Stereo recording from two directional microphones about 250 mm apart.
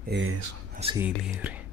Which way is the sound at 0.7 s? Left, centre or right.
Right.